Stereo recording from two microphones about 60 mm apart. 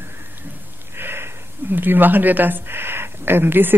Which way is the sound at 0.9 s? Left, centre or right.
Right.